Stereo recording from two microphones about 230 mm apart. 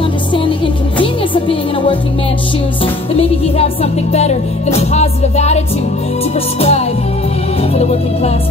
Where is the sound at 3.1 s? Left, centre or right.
Left.